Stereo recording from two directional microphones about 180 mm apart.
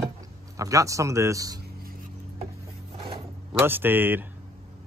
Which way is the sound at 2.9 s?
30° right (ahead or behind).